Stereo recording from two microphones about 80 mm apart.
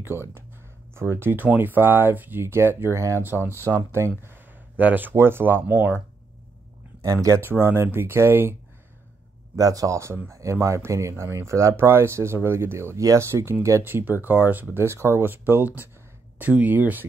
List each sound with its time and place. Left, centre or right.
0.0 s speech: right
3.3 s speech: left
3.9 s speech: right
7.0 s speech: right
7.4 s speech: right
9.6 s speech: right